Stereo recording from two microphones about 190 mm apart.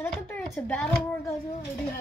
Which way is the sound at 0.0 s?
10° left (ahead or behind).